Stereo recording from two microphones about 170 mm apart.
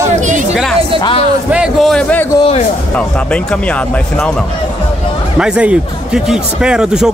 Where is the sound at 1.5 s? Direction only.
Centre (ahead or behind).